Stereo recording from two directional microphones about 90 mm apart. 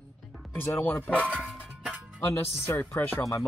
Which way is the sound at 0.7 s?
25° left (ahead or behind).